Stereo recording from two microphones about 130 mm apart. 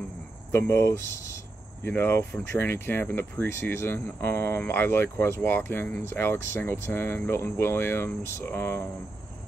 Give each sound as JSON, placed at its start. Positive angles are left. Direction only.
{"t": 0.5, "sound": "speech", "side_deg": 20}